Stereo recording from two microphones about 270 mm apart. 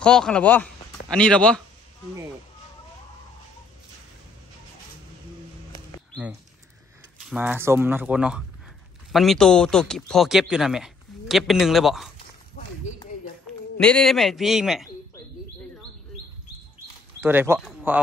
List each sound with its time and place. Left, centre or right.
0.0 s speech: centre
7.2 s speech: centre
13.7 s speech: centre
17.2 s speech: centre